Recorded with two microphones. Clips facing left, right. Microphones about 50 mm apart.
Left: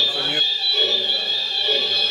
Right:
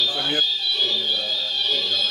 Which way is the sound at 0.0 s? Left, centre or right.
Left.